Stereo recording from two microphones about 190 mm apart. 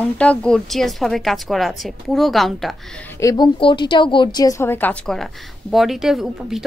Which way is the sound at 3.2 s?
20° left (ahead or behind).